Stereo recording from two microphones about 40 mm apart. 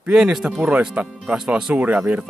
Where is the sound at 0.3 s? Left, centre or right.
Centre.